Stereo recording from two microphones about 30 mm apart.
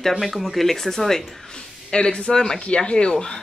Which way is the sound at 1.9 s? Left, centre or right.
Left.